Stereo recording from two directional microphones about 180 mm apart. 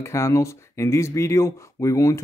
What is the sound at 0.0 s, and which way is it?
Speech, 15° left (ahead or behind).